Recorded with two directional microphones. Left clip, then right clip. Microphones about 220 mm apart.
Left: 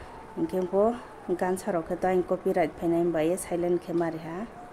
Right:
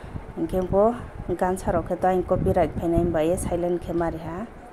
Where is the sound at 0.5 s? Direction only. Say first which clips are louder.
Right 5 dB; 5° right (ahead or behind).